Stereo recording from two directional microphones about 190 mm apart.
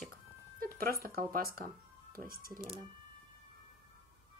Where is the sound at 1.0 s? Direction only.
50° right (ahead or behind).